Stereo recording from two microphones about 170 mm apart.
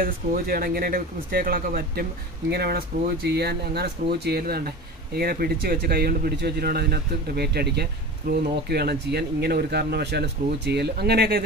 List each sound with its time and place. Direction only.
0.0 s speech: 60° right (ahead or behind)